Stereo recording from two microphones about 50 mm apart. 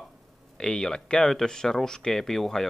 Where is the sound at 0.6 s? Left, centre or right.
Centre.